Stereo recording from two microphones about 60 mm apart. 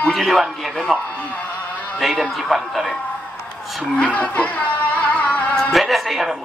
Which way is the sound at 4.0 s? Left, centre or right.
Left.